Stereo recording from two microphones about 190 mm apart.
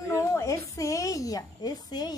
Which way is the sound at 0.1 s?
15° left (ahead or behind).